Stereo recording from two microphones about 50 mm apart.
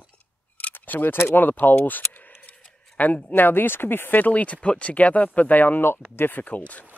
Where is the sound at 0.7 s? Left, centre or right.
Left.